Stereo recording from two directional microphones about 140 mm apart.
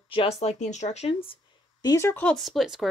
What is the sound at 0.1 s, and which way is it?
Speech, 40° left (ahead or behind).